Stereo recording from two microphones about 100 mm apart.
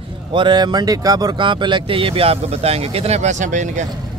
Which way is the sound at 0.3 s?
50° right (ahead or behind).